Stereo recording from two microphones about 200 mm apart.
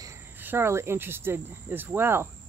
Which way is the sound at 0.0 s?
10° right (ahead or behind).